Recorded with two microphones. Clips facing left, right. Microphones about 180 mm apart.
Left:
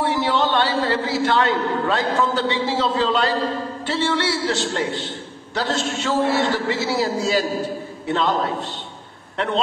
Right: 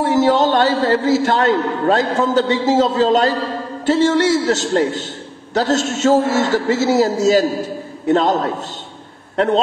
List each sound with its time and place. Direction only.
0.0 s a man's voice: 45° right (ahead or behind)